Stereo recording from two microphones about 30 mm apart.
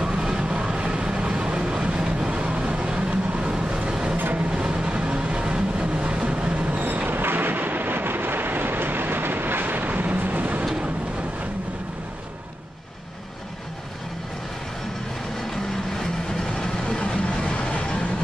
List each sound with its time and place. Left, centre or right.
0.0 s vehicle: right
4.2 s vehicle: right
4.5 s vehicle: right
6.8 s a sound: right
8.4 s vehicle: right
15.5 s vehicle: centre
16.5 s vehicle: left
17.4 s music: left